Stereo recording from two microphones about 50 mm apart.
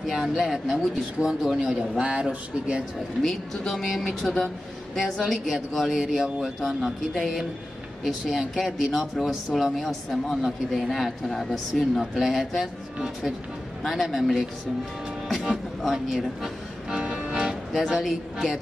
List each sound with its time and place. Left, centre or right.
0.0 s speech: centre
3.2 s speech: centre
15.8 s speech: centre
16.9 s music: centre
17.7 s speech: centre